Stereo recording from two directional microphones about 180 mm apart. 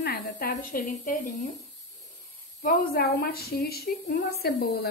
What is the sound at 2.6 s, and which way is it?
A woman's voice, 55° left (ahead or behind).